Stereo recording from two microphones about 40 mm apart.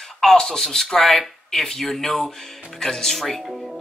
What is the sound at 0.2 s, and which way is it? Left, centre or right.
Speech, centre.